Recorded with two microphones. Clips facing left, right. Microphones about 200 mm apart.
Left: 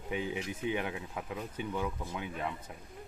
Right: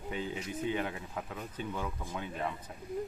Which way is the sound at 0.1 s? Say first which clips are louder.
Left 2 dB; 15° left (ahead or behind).